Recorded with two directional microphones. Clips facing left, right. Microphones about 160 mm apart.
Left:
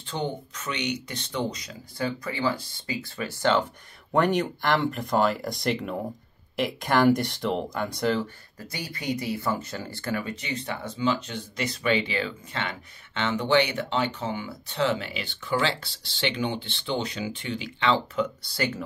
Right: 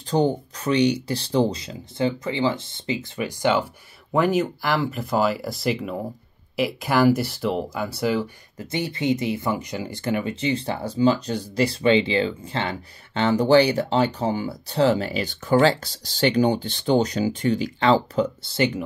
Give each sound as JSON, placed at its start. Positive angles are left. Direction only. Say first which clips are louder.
{"t": 0.0, "sound": "speech", "louder": "right 10 dB", "side_deg": -40}
{"t": 8.5, "sound": "speech", "louder": "right 10 dB", "side_deg": -25}